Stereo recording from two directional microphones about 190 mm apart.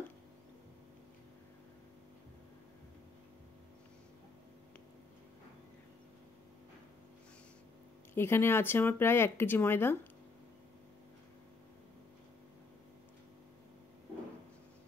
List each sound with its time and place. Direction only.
8.1 s speech: 10° left (ahead or behind)